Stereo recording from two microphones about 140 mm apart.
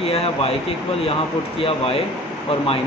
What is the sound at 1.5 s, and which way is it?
Speech, 40° left (ahead or behind).